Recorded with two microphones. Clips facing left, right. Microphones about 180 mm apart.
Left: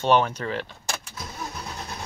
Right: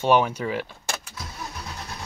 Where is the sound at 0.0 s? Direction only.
10° right (ahead or behind).